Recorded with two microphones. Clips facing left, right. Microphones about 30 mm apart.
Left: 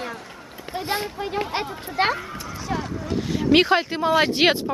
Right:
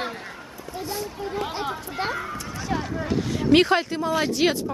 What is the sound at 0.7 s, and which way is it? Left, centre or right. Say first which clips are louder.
Speech: left 5 dB; left.